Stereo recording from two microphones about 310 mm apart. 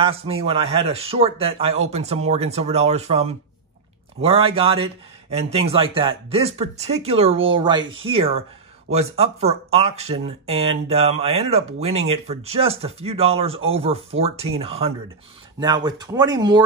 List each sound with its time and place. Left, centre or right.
0.0 s speech: centre